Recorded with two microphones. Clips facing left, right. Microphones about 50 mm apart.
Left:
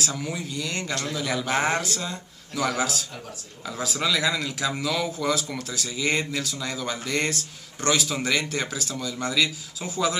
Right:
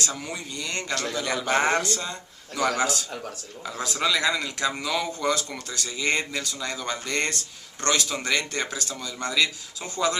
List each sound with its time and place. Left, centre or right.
0.0 s a man's voice: centre